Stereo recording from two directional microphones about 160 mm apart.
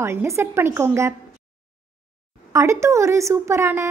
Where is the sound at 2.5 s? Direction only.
20° right (ahead or behind).